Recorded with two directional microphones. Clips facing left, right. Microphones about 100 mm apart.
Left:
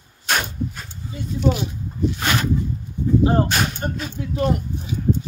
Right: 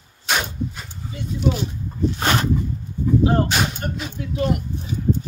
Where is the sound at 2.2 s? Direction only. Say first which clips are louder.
Right 3 dB; 35° right (ahead or behind).